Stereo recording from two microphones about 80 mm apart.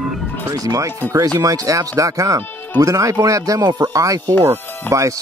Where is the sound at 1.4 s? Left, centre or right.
Right.